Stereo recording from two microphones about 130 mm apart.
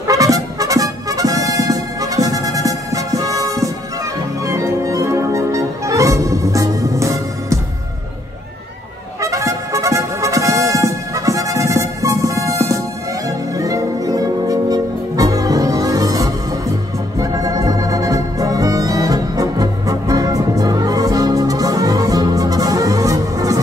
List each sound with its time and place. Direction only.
0.0 s music: 25° right (ahead or behind)
9.2 s music: 25° right (ahead or behind)
17.2 s organ: 25° right (ahead or behind)